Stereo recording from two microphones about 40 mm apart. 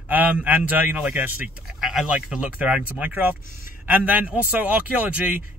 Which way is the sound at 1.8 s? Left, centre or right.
Centre.